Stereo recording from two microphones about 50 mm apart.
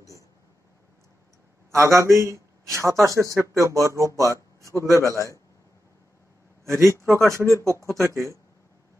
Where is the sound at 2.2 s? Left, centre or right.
Right.